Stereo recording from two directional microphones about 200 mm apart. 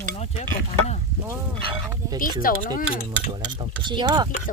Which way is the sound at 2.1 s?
45° left (ahead or behind).